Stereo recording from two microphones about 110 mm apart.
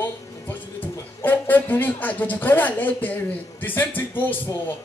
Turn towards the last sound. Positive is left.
turn(degrees=15)  # may be behind; listen again after turning